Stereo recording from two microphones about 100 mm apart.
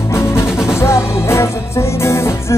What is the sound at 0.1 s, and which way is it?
Music, 25° left (ahead or behind).